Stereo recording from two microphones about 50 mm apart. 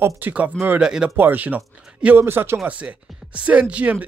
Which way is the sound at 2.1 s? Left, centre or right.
Right.